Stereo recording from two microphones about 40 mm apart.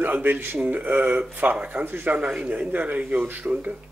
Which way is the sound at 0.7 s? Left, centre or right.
Right.